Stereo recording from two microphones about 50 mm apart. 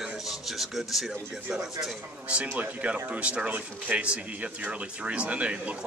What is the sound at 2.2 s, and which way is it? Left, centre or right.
Speech, right.